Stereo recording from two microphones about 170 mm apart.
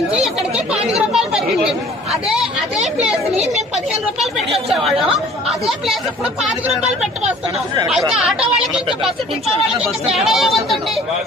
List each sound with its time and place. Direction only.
0.1 s speech: 5° right (ahead or behind)
0.9 s chatter: 5° right (ahead or behind)
3.3 s speech: 40° right (ahead or behind)
4.2 s speech: centre (ahead or behind)
7.9 s speech: 5° right (ahead or behind)
10.0 s speech: centre (ahead or behind)